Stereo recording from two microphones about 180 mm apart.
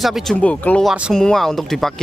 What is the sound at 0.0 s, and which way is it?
Speech, centre (ahead or behind).